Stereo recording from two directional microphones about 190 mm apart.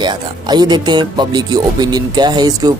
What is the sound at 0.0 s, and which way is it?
Speech, 25° right (ahead or behind).